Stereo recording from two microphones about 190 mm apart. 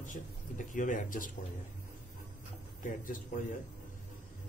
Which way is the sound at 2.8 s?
45° left (ahead or behind).